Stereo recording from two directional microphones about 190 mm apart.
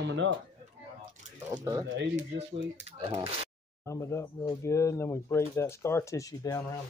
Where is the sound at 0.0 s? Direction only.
70° right (ahead or behind).